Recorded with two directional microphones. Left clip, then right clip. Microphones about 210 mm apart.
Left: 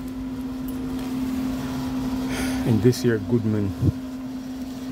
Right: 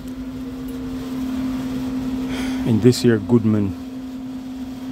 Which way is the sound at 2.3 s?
Centre (ahead or behind).